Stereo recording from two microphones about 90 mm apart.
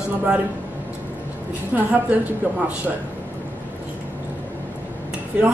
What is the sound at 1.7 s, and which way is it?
Speech, 15° right (ahead or behind).